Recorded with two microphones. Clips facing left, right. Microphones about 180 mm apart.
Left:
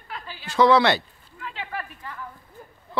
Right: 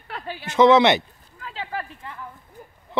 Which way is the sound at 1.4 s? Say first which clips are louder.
Right 2 dB; 30° right (ahead or behind).